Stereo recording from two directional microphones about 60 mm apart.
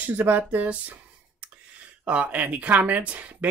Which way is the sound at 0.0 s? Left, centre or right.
Right.